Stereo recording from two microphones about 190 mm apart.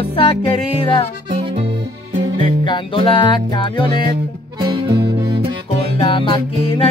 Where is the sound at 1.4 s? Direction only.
30° right (ahead or behind).